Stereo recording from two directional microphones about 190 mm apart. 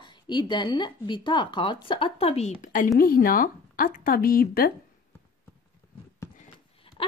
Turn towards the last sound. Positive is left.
turn(degrees=30)  # may be behind; listen again after turning